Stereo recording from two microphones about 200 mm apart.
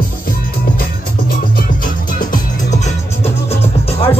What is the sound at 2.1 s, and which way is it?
Music, 40° left (ahead or behind).